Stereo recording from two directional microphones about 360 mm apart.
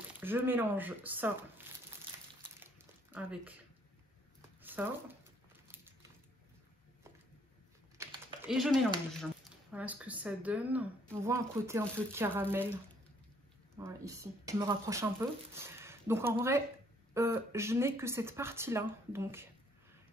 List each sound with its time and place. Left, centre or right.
0.2 s speech: centre
2.6 s a sound: centre
4.6 s speech: centre
8.0 s typing: centre
9.2 s speech: centre
13.7 s speech: centre